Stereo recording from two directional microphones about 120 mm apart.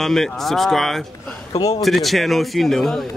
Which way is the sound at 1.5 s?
35° left (ahead or behind).